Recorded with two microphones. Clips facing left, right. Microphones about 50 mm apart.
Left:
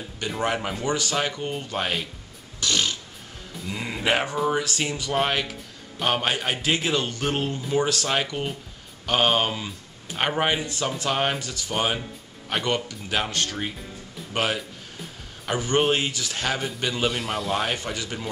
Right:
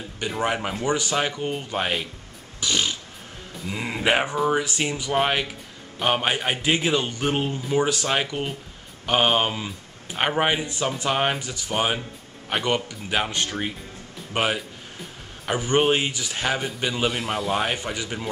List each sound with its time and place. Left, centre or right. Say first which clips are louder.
0.2 s speech: right 1 dB; centre
2.6 s a sound: even; centre
3.6 s speech: right 2 dB; centre